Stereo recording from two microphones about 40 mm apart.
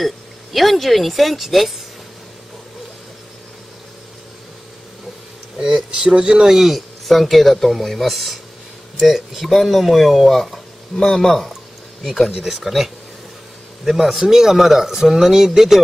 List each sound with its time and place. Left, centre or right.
0.0 s speech: centre
5.9 s speech: right
6.4 s speech: centre
12.3 s speech: centre